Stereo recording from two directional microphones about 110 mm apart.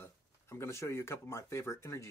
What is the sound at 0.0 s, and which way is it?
Speech, 25° left (ahead or behind).